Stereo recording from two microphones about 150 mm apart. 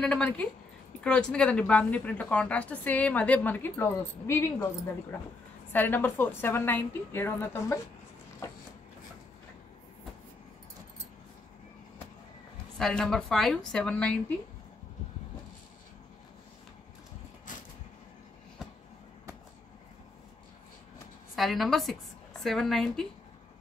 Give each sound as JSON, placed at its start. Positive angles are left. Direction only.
{"t": 0.0, "sound": "a woman's voice", "side_deg": 5}
{"t": 5.7, "sound": "speech", "side_deg": 15}
{"t": 8.4, "sound": "a sound", "side_deg": 20}
{"t": 12.7, "sound": "a woman's voice", "side_deg": 5}
{"t": 21.4, "sound": "a woman's voice", "side_deg": 0}